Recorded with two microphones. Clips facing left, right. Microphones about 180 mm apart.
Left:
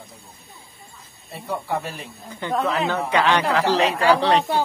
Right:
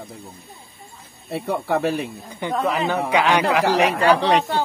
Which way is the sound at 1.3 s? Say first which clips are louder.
Right 5 dB; 70° right (ahead or behind).